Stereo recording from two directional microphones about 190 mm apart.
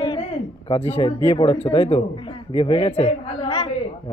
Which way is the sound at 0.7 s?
25° left (ahead or behind).